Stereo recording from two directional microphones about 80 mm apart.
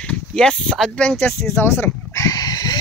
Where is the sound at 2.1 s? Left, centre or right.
Left.